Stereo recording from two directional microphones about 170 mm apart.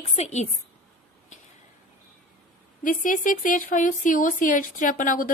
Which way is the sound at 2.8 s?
50° left (ahead or behind).